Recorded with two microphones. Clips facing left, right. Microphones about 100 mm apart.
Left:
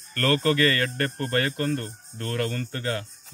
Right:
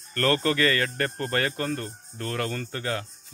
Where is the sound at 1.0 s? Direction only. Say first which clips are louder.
Left 1 dB; 25° right (ahead or behind).